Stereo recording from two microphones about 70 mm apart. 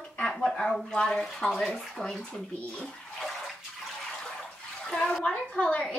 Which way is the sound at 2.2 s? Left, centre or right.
Centre.